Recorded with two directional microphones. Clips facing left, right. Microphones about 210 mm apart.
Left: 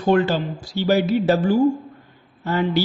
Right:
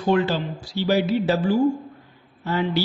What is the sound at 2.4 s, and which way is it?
Speech, 50° left (ahead or behind).